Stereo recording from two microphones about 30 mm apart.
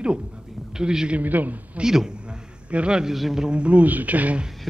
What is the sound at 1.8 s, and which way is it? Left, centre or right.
Speech, centre.